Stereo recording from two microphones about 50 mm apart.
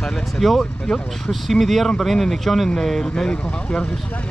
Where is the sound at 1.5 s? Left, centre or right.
Centre.